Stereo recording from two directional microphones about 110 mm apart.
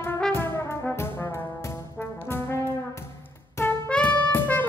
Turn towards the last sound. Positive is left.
turn(degrees=15)  # may be behind; listen again after turning